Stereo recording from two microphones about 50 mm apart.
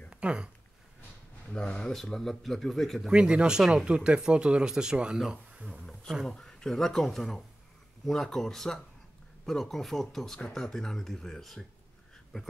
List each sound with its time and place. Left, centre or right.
0.1 s speech: right
1.5 s speech: centre
1.9 s speech: centre
3.1 s speech: centre
6.2 s speech: centre